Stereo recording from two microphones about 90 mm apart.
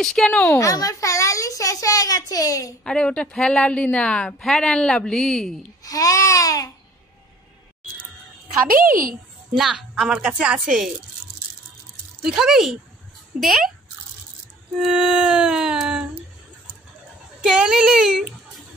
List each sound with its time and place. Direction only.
0.0 s speech: 5° left (ahead or behind)
0.5 s speech: 40° left (ahead or behind)
2.8 s a woman's voice: 10° left (ahead or behind)
5.9 s speech: 40° left (ahead or behind)
9.6 s a woman's voice: centre (ahead or behind)
12.2 s speech: 5° right (ahead or behind)
14.8 s a woman's voice: 5° right (ahead or behind)
17.4 s a woman's voice: 5° right (ahead or behind)